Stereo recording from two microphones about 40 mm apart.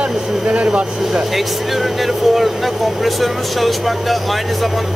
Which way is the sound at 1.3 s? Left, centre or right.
Centre.